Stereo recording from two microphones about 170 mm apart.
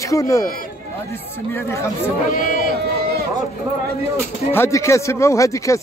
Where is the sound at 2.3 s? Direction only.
55° left (ahead or behind).